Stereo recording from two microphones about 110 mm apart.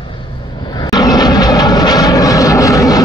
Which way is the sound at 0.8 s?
35° left (ahead or behind).